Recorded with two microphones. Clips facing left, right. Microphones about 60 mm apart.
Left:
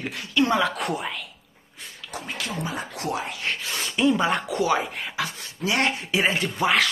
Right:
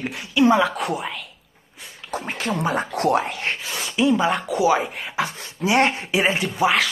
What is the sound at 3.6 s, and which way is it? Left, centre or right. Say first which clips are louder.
A woman's voice: right 1 dB; centre.